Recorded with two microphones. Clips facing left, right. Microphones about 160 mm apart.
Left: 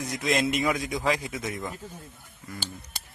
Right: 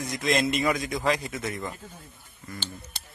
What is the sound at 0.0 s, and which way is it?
A man's voice, 10° left (ahead or behind).